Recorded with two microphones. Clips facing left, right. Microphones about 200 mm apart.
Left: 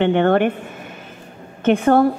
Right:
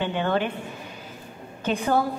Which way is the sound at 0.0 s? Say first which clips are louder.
Left 9 dB; 65° left (ahead or behind).